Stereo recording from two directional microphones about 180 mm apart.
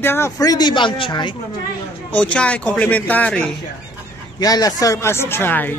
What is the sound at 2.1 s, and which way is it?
A man's voice, 5° left (ahead or behind).